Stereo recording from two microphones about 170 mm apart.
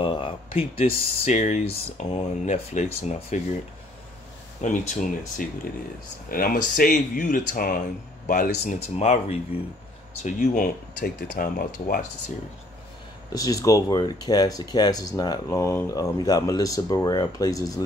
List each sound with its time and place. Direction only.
0.0 s speech: 30° left (ahead or behind)
4.6 s speech: 45° left (ahead or behind)
6.2 s speech: 60° left (ahead or behind)
11.0 s speech: 60° left (ahead or behind)
13.3 s speech: 20° left (ahead or behind)